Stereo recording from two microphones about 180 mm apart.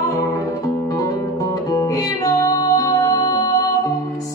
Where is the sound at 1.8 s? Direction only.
20° left (ahead or behind).